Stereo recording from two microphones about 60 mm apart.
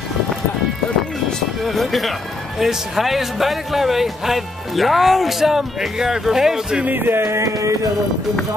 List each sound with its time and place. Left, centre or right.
1.6 s a man's voice: centre
6.8 s music: right